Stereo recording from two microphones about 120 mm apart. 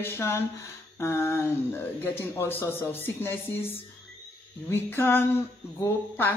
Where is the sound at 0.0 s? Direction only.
20° left (ahead or behind).